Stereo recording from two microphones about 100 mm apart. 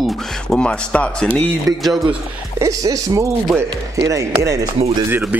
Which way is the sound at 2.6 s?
35° right (ahead or behind).